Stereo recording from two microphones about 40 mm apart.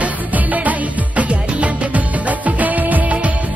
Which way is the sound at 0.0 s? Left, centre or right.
Right.